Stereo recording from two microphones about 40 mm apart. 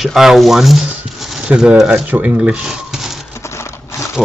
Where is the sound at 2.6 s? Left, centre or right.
Centre.